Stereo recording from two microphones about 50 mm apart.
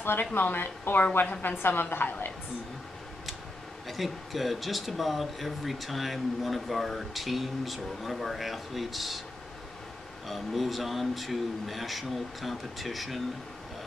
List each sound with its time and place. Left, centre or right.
0.0 s a woman's voice: left
3.8 s speech: centre
10.2 s speech: centre